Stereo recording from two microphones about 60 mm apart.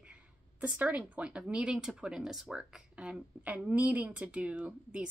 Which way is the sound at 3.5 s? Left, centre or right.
Right.